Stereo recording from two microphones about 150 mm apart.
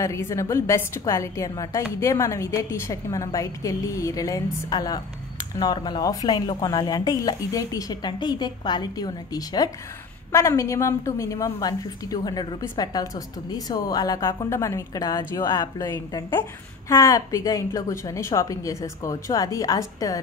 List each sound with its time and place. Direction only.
0.0 s a woman's voice: 20° left (ahead or behind)